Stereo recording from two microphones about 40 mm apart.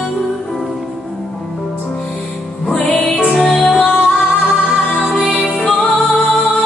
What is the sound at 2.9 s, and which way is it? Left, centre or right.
Music, centre.